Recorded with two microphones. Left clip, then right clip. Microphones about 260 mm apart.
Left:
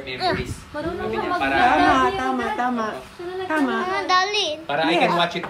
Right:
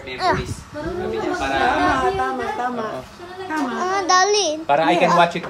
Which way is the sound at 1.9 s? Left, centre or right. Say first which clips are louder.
Even; left.